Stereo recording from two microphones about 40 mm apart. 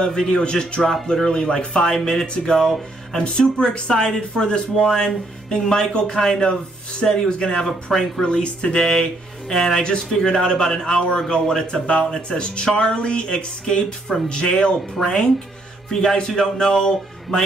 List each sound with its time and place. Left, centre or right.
0.0 s a man's voice: centre
2.6 s speech: centre
3.3 s speech: left
7.6 s a man's voice: centre
8.3 s a man's voice: left
15.0 s speech: centre
15.9 s a man's voice: centre